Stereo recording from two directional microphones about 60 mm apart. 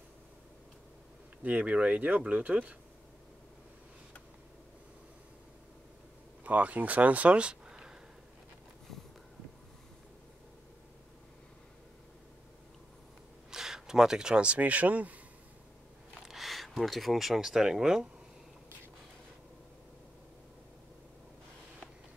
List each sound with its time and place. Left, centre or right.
1.4 s speech: right
6.4 s speech: right
13.5 s speech: centre; by 15.1 s right
16.3 s speech: centre